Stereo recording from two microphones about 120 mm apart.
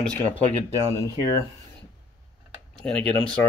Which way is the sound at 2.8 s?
5° left (ahead or behind).